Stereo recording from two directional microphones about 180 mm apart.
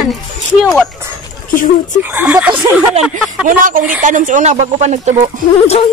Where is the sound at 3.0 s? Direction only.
Centre (ahead or behind).